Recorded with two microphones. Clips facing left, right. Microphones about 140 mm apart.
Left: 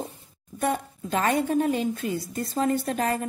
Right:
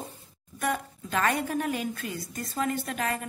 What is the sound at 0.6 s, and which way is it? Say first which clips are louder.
A woman's voice: left 4 dB; 30° left (ahead or behind).